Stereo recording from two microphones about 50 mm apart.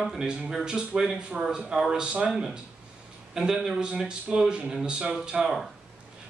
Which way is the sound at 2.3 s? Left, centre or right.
Centre.